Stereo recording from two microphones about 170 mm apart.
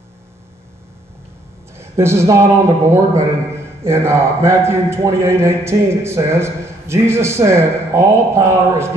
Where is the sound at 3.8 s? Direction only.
15° right (ahead or behind).